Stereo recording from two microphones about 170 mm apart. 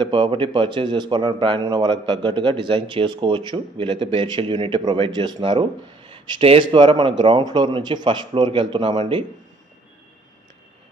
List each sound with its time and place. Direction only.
0.0 s speech: 30° right (ahead or behind)